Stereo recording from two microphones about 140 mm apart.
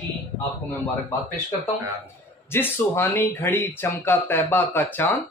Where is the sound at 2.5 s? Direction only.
15° left (ahead or behind).